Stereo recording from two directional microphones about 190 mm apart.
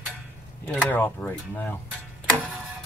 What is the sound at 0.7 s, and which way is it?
Speech, 10° left (ahead or behind).